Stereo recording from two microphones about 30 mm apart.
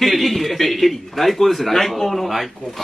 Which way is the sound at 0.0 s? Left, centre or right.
Centre.